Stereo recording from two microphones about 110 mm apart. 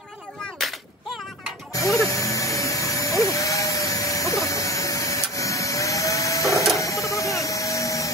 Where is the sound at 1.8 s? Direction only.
30° left (ahead or behind).